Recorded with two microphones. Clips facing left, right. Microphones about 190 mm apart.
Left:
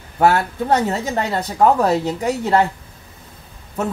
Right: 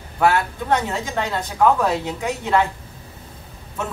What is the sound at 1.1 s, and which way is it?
Speech, 40° left (ahead or behind).